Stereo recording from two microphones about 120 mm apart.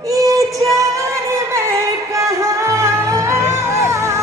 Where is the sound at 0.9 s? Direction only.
25° right (ahead or behind).